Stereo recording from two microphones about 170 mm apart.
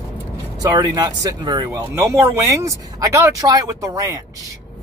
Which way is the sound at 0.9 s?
20° right (ahead or behind).